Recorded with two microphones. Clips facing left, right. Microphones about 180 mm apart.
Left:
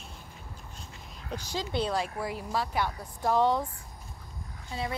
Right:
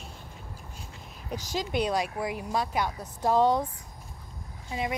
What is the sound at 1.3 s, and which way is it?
Speech, 15° right (ahead or behind).